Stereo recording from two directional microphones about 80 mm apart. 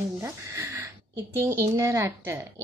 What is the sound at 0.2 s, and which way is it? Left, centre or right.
A woman's voice, right.